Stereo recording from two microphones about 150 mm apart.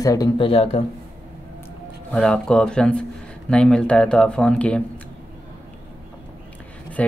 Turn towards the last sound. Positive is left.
turn(degrees=10)  # may be behind; listen again after turning